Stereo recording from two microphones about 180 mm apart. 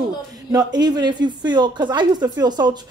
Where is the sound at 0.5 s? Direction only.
20° right (ahead or behind).